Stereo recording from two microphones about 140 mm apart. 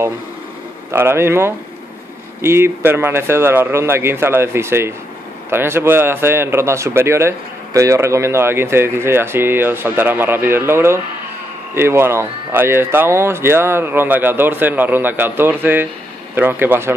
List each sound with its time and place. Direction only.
0.9 s a man's voice: 15° right (ahead or behind)